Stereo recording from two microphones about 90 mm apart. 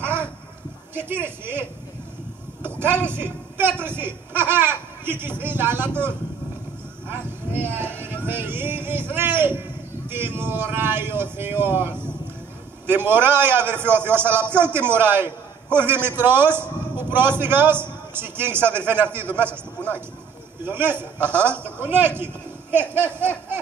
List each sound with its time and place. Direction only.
0.0 s a sound: 25° right (ahead or behind)
0.9 s speech: 25° right (ahead or behind)
2.8 s a man's voice: 25° right (ahead or behind)
20.6 s speech: 25° right (ahead or behind)